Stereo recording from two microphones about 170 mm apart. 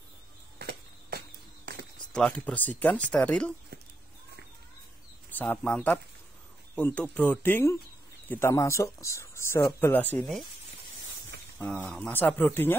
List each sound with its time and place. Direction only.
0.6 s a sound: 70° right (ahead or behind)
2.1 s speech: 5° left (ahead or behind)
5.3 s speech: 10° left (ahead or behind)
11.5 s speech: 5° left (ahead or behind)